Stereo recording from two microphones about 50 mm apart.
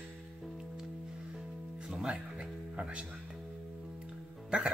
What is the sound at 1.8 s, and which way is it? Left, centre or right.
Music, centre.